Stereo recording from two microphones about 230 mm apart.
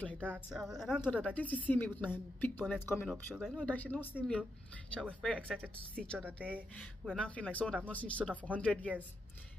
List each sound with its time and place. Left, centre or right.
0.2 s speech: centre
6.2 s speech: centre